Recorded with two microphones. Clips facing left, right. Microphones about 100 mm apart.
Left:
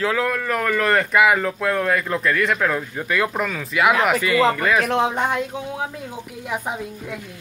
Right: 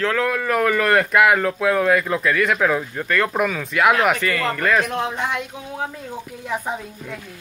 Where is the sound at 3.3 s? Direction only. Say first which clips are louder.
Right 2 dB; 5° right (ahead or behind).